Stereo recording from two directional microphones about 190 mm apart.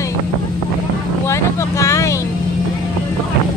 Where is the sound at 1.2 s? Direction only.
15° left (ahead or behind).